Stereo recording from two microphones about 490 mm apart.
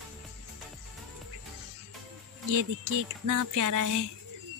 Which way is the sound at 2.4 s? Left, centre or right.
Right.